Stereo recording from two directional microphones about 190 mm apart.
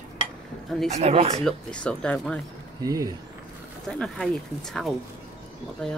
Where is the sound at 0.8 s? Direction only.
35° right (ahead or behind).